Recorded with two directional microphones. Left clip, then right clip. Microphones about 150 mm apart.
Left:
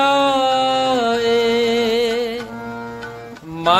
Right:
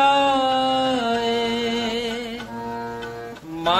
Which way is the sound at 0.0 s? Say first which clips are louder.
Left 2 dB; 45° left (ahead or behind).